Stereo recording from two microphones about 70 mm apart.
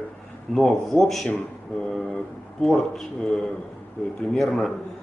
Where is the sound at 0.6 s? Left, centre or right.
Centre.